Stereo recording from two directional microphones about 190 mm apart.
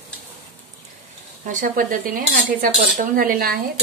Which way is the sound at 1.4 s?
45° right (ahead or behind).